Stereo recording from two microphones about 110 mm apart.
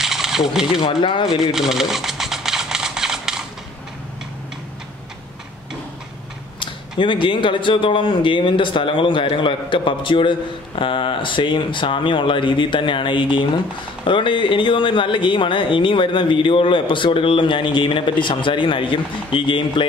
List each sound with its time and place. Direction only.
0.0 s rattle: 5° right (ahead or behind)
0.8 s speech: 50° left (ahead or behind)
1.5 s a sound: 5° right (ahead or behind)
6.6 s speech: 50° left (ahead or behind)